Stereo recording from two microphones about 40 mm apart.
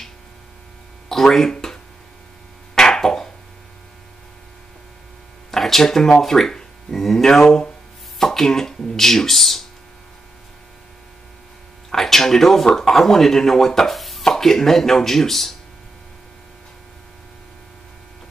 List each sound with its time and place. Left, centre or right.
1.0 s speech: centre
2.7 s a sound: centre
5.5 s speech: centre
11.9 s speech: centre